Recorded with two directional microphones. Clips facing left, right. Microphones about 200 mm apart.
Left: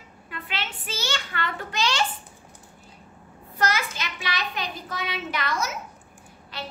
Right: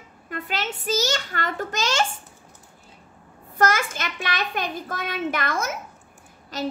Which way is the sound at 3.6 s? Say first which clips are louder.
Right 4 dB; 50° right (ahead or behind).